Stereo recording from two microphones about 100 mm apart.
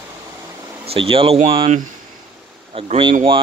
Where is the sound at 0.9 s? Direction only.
65° right (ahead or behind).